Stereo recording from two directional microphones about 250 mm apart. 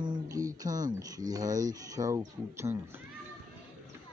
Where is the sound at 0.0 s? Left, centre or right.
Centre.